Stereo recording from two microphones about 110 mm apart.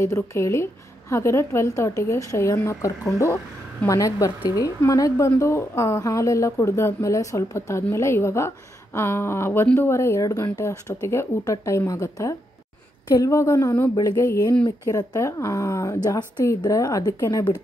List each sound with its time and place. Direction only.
0.0 s a woman's voice: 25° left (ahead or behind)